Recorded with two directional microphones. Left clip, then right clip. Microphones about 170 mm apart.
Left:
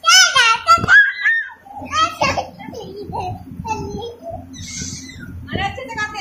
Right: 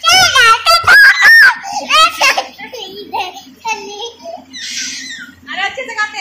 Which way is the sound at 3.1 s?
5° left (ahead or behind).